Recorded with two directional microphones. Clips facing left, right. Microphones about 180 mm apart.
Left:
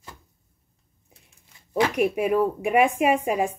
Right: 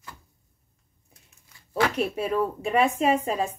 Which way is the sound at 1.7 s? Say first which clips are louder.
Left 3 dB; 15° left (ahead or behind).